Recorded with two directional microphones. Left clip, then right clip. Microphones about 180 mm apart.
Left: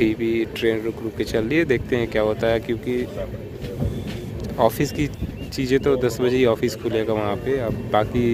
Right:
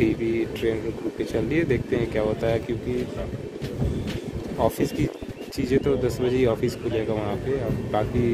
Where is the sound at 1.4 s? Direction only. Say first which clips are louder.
Left 4 dB; 5° left (ahead or behind).